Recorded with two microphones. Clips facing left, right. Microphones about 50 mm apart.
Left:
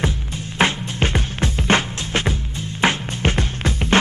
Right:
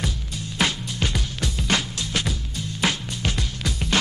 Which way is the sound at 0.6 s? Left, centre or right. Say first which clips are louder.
Left 5 dB; left.